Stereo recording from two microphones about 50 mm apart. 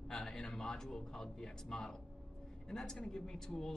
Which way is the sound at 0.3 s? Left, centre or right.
Centre.